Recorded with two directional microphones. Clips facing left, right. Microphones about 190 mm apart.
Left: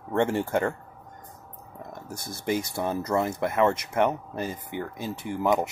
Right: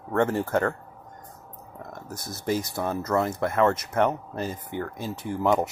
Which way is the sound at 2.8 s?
15° left (ahead or behind).